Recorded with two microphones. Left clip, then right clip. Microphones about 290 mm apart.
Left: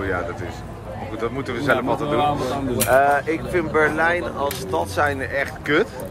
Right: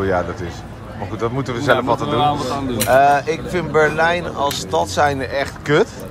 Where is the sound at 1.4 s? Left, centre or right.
Centre.